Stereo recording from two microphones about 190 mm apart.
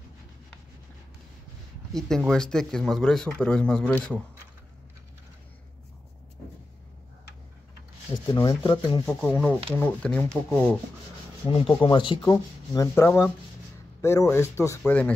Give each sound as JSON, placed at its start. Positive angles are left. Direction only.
{"t": 1.9, "sound": "speech", "side_deg": 0}
{"t": 8.3, "sound": "speech", "side_deg": 20}
{"t": 9.0, "sound": "speech", "side_deg": 5}
{"t": 11.4, "sound": "a man's voice", "side_deg": 30}